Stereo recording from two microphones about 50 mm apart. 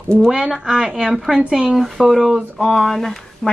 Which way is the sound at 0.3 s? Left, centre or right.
Centre.